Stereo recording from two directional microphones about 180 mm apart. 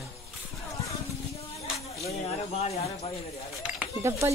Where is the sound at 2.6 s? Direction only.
35° left (ahead or behind).